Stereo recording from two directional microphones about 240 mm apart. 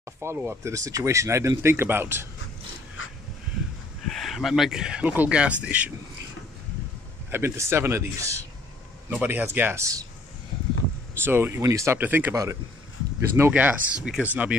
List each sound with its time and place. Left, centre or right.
0.2 s speech: centre
4.1 s speech: centre
7.2 s speech: centre
11.2 s speech: centre